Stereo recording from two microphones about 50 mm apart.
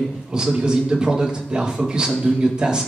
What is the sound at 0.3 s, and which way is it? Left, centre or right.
A man's voice, centre.